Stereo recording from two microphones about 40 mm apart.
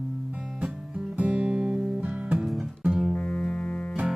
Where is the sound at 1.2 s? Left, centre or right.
Right.